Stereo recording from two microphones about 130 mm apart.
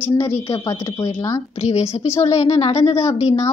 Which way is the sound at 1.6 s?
55° left (ahead or behind).